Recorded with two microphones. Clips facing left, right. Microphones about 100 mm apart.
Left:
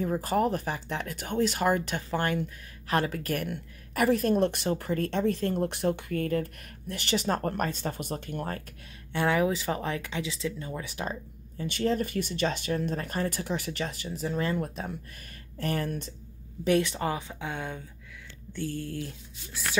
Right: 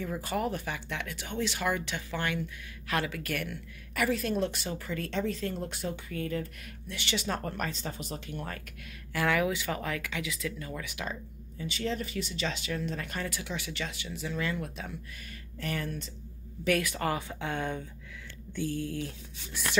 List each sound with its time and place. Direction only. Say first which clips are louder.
0.0 s speech: left 6 dB; 40° left (ahead or behind)
3.4 s a woman's voice: left 4 dB; 45° left (ahead or behind)
9.1 s speech: left 3 dB; 30° left (ahead or behind)
11.6 s a woman's voice: left 6 dB; 50° left (ahead or behind)
16.6 s speech: left 3 dB; 25° left (ahead or behind); by 17.8 s 10° left (ahead or behind)
18.6 s speech: right 1 dB; 10° right (ahead or behind)
18.9 s speech: even; centre (ahead or behind)